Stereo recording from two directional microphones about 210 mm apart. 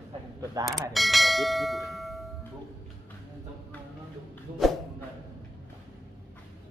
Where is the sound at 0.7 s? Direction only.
Centre (ahead or behind).